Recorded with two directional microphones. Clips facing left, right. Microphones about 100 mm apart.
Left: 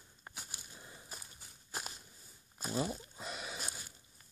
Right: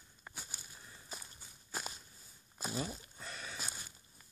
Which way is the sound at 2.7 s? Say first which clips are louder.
Left 6 dB; 10° left (ahead or behind).